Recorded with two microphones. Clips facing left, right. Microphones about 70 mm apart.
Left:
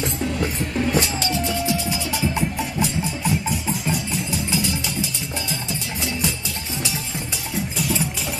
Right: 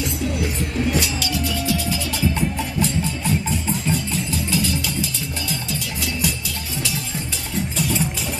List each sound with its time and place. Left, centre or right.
0.9 s music: left